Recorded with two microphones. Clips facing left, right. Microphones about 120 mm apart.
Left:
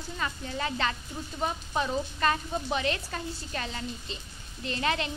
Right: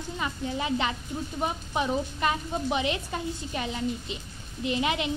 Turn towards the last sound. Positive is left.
turn(degrees=-15)  # may be behind; listen again after turning